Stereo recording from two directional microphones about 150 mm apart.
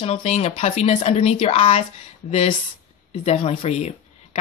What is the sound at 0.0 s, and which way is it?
Speech, 45° left (ahead or behind).